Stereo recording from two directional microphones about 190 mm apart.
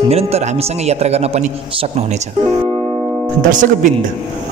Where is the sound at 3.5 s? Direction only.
40° right (ahead or behind).